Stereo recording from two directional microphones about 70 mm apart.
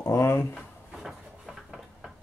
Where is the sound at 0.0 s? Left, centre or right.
Left.